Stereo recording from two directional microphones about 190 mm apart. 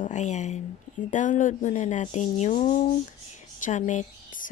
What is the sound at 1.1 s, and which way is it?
Speech, 40° left (ahead or behind).